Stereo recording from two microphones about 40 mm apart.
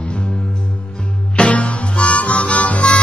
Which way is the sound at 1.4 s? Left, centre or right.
Left.